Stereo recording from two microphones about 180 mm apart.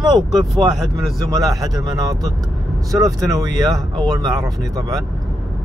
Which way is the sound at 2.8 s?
20° right (ahead or behind).